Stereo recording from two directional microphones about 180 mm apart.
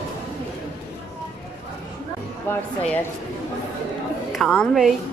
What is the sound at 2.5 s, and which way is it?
Speech, 10° left (ahead or behind).